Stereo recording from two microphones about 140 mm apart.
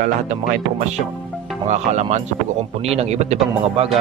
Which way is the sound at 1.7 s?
55° right (ahead or behind).